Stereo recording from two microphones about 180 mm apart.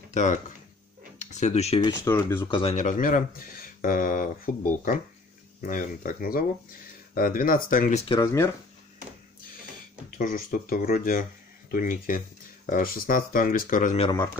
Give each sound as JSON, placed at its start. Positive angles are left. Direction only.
{"t": 0.1, "sound": "speech", "side_deg": 40}
{"t": 2.0, "sound": "speech", "side_deg": 15}
{"t": 2.5, "sound": "speech", "side_deg": 30}
{"t": 2.8, "sound": "speech", "side_deg": 45}
{"t": 8.1, "sound": "speech", "side_deg": 20}
{"t": 10.1, "sound": "speech", "side_deg": 50}